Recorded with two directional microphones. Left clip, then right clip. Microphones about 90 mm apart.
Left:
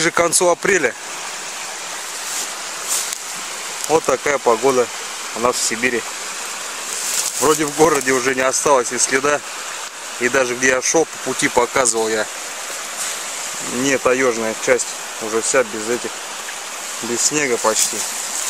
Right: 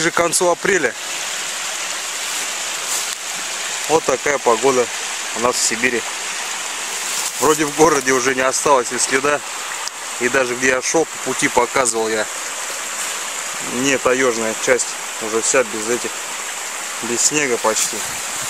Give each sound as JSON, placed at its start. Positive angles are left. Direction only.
{"t": 0.0, "sound": "speech", "side_deg": 10}
{"t": 3.9, "sound": "speech", "side_deg": 0}
{"t": 7.3, "sound": "speech", "side_deg": -5}
{"t": 13.8, "sound": "speech", "side_deg": 0}
{"t": 17.2, "sound": "speech", "side_deg": 0}